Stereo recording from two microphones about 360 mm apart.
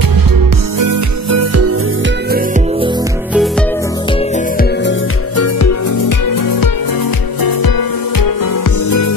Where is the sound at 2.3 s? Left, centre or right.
Right.